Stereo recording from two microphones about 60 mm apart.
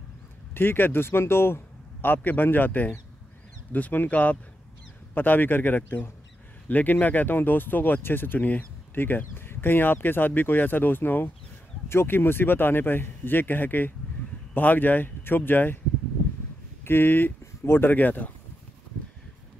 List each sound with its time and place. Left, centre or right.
0.6 s speech: left
16.8 s speech: left